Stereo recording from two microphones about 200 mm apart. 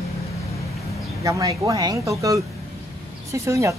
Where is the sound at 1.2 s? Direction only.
15° right (ahead or behind).